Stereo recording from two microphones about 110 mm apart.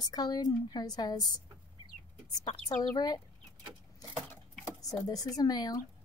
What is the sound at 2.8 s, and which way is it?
Speech, 35° left (ahead or behind).